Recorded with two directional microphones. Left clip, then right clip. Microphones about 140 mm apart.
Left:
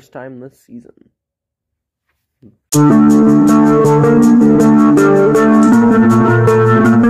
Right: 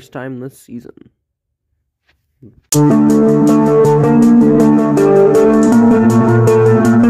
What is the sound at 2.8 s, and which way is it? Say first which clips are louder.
Music: left 1 dB; centre (ahead or behind).